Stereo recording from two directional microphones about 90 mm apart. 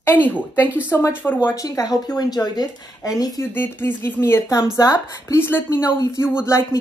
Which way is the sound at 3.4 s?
25° left (ahead or behind).